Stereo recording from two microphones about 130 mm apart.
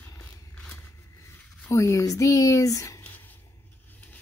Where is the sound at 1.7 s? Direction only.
25° left (ahead or behind).